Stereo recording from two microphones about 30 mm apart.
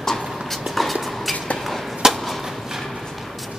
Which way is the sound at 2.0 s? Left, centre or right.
Centre.